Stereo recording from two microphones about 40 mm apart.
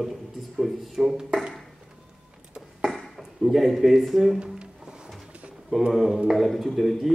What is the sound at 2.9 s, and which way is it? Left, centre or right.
Speech, centre.